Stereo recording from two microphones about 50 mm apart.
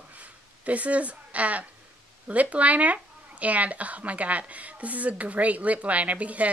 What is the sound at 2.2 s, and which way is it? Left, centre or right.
Speech, right.